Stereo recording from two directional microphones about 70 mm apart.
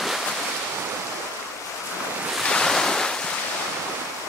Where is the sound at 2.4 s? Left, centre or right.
Centre.